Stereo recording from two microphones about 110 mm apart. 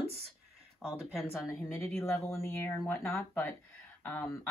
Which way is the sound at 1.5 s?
25° left (ahead or behind).